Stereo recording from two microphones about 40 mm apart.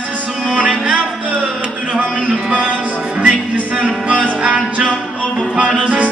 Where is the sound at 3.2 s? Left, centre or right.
Right.